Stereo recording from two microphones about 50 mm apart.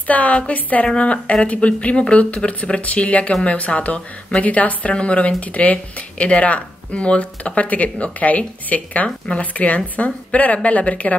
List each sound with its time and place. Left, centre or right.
0.0 s a woman's voice: left